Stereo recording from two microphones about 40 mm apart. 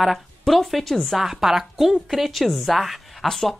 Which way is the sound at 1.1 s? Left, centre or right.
Centre.